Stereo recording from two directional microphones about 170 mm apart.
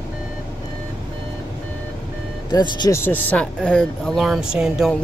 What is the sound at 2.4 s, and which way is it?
Speech, 25° left (ahead or behind).